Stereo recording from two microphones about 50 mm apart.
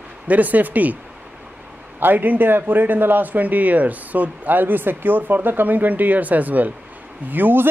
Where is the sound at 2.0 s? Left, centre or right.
Right.